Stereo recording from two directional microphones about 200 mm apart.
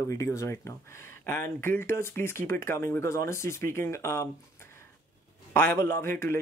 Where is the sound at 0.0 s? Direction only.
15° left (ahead or behind).